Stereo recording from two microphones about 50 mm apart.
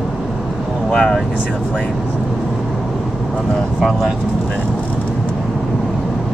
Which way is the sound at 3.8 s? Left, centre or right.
Centre.